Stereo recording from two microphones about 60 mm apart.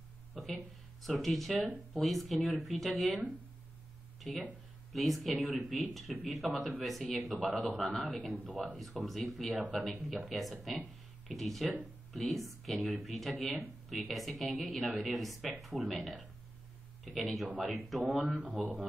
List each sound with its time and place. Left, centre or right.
0.3 s a sound: centre
1.0 s speech: centre
4.2 s speech: centre
18.2 s speech: right